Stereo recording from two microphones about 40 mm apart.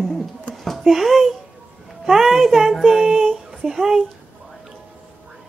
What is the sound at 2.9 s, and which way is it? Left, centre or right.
Child singing, centre.